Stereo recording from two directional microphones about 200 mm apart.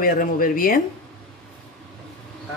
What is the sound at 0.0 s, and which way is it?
Speech, 45° left (ahead or behind).